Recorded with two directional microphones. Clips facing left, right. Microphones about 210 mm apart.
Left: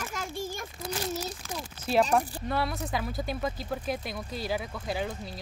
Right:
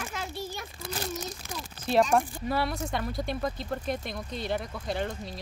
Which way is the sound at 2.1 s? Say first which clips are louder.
Right 1 dB; centre (ahead or behind).